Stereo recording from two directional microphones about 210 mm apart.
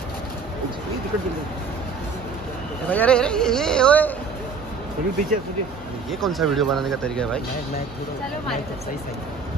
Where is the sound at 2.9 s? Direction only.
5° left (ahead or behind).